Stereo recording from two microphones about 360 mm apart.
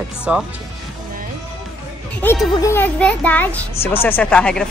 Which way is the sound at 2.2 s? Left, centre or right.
Centre.